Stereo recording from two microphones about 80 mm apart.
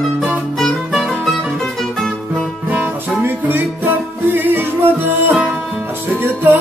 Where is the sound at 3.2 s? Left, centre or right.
Right.